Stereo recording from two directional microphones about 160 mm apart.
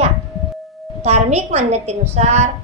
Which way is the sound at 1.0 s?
45° right (ahead or behind).